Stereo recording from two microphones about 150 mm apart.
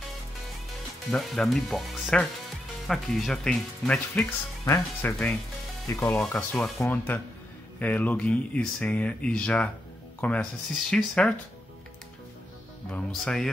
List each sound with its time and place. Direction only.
1.1 s speech: centre (ahead or behind)
12.9 s speech: 5° left (ahead or behind)